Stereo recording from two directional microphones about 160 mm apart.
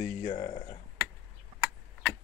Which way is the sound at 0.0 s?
30° left (ahead or behind).